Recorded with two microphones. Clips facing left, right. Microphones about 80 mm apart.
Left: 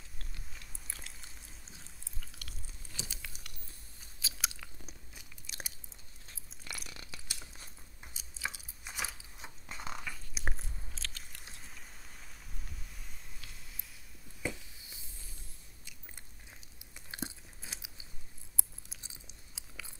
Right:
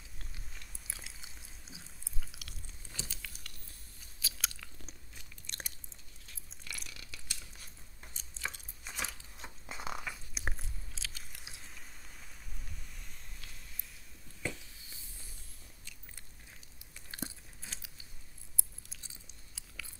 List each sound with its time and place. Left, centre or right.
0.2 s chewing: centre
3.0 s crumpling: centre
4.2 s chewing: centre
4.8 s crunch: centre
6.9 s a sound: left
8.0 s a sound: centre
9.7 s biting: centre
16.9 s chewing: centre